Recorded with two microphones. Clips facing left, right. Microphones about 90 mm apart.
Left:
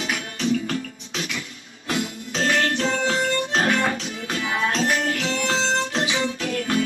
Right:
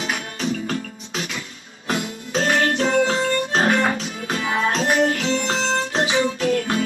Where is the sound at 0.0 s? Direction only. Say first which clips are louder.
Even; 35° right (ahead or behind).